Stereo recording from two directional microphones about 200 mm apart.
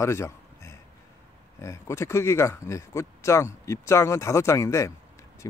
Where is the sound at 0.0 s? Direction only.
15° left (ahead or behind).